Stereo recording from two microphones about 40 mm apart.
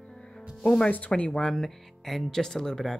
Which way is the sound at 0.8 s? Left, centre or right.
Left.